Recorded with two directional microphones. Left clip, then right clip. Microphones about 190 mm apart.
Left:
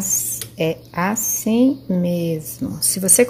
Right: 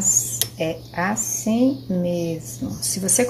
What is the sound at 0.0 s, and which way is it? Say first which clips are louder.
Speech: right 2 dB; 55° left (ahead or behind).